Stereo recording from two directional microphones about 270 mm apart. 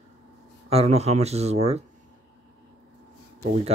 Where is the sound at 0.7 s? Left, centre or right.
Right.